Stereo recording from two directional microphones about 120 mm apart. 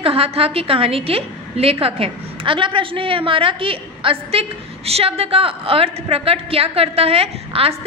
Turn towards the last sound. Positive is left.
turn(degrees=-55)  # may be behind; listen again after turning